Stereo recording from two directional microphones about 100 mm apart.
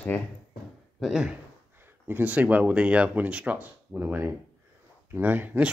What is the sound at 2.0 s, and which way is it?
Speech, 15° right (ahead or behind).